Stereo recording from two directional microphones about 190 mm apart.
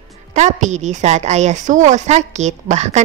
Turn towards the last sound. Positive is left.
turn(degrees=-35)  # may be behind; listen again after turning